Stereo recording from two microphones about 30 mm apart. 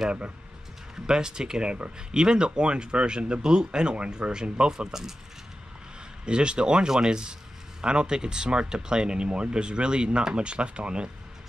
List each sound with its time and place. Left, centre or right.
0.9 s speech: right
6.2 s speech: right